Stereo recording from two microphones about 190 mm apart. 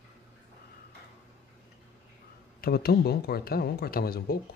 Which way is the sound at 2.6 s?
55° left (ahead or behind).